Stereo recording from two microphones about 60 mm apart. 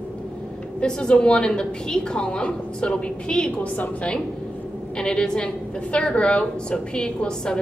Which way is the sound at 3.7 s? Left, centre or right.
Left.